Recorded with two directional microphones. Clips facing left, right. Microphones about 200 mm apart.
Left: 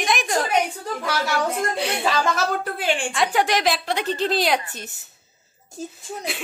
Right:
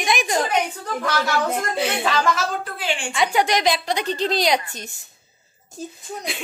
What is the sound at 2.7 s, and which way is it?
Speech, 50° left (ahead or behind).